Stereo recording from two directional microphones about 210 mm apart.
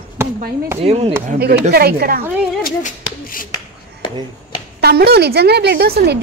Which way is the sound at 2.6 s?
40° left (ahead or behind).